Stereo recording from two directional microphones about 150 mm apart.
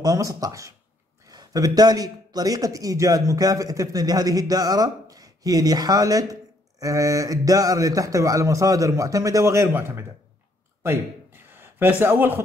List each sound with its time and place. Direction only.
0.0 s a man's voice: 20° right (ahead or behind)
11.5 s a man's voice: 15° right (ahead or behind)